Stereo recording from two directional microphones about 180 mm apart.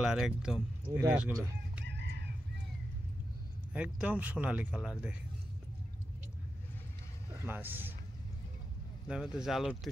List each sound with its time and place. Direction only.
0.0 s speech: 5° right (ahead or behind)
1.9 s chicken: 70° right (ahead or behind)
3.7 s speech: 5° right (ahead or behind)
7.4 s speech: 10° right (ahead or behind)
9.0 s speech: 5° right (ahead or behind)